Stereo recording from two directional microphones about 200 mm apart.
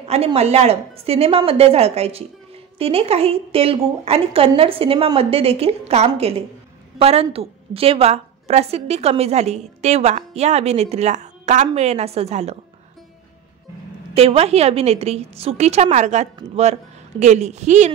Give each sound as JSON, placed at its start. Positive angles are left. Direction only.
{"t": 0.1, "sound": "a woman's voice", "side_deg": -30}
{"t": 14.1, "sound": "a woman's voice", "side_deg": -30}